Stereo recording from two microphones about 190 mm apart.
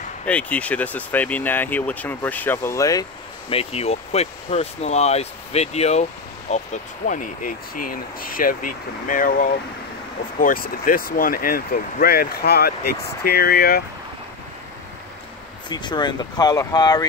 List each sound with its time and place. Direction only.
0.3 s speech: 5° left (ahead or behind)
3.4 s speech: 30° left (ahead or behind); by 13.8 s 55° left (ahead or behind)
15.7 s speech: 25° left (ahead or behind)